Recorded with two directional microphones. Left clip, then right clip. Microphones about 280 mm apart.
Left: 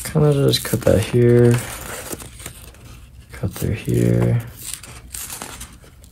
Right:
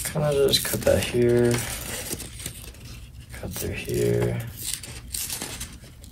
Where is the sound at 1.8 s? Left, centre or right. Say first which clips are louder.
Left 3 dB; centre.